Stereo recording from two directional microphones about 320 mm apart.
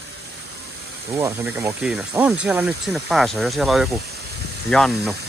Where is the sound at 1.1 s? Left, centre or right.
Centre.